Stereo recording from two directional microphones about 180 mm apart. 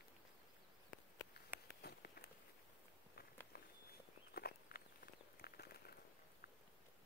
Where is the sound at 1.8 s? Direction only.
60° left (ahead or behind).